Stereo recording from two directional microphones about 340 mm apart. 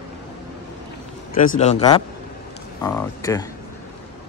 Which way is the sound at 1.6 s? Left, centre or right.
Centre.